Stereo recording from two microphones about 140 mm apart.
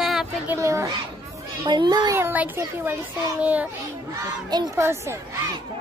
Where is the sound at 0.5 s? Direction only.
20° right (ahead or behind).